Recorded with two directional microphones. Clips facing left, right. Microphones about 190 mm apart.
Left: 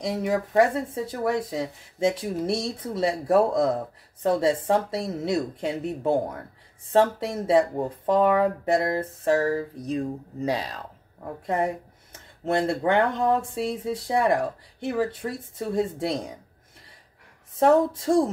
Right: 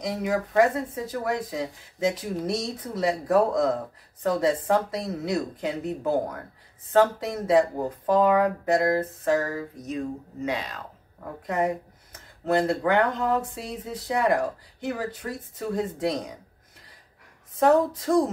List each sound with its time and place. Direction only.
0.0 s speech: 30° left (ahead or behind)
17.6 s speech: 30° left (ahead or behind)